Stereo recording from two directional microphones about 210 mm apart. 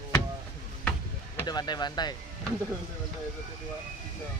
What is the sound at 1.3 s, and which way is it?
Speech, 20° left (ahead or behind).